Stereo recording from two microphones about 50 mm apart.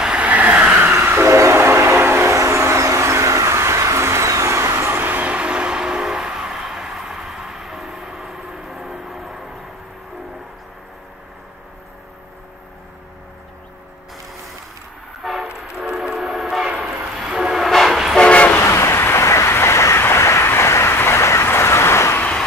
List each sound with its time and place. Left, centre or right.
0.0 s vehicle: centre
0.3 s vehicle: right
1.2 s train: right
1.5 s train: right
2.3 s vehicle: right
5.0 s vehicle: right; by 9.4 s centre
16.0 s train: centre
18.3 s train: left
18.6 s vehicle: left
20.4 s vehicle: left